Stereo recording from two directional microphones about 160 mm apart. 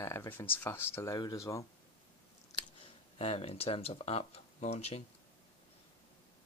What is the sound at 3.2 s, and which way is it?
Speech, 40° left (ahead or behind).